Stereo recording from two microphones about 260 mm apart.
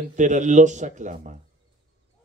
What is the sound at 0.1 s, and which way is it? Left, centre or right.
Speech, right.